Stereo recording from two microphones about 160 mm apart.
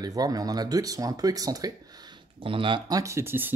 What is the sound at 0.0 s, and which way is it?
Speech, 25° right (ahead or behind).